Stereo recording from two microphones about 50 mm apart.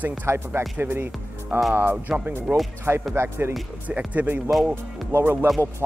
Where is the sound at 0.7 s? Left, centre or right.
Right.